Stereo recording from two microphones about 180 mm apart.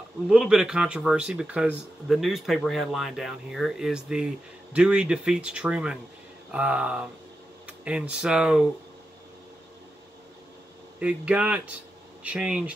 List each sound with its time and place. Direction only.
0.3 s speech: 5° right (ahead or behind)
11.0 s speech: 5° right (ahead or behind)